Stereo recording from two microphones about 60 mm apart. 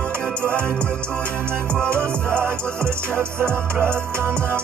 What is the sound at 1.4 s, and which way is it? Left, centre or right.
Music, right.